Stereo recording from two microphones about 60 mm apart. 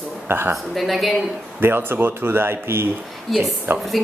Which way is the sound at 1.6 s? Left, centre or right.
Right.